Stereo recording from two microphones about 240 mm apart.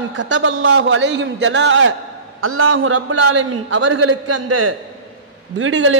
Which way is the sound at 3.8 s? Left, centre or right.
Right.